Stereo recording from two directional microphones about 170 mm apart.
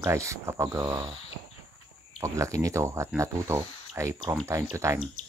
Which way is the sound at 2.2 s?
20° right (ahead or behind).